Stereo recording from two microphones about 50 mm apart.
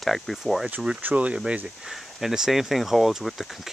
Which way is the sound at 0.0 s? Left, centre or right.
Centre.